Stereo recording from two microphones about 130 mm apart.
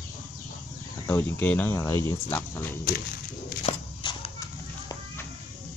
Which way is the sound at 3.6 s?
45° left (ahead or behind).